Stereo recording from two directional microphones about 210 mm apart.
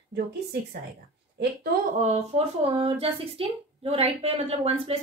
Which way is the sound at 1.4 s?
50° right (ahead or behind).